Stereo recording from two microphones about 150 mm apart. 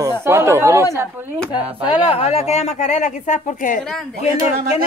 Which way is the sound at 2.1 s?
45° left (ahead or behind).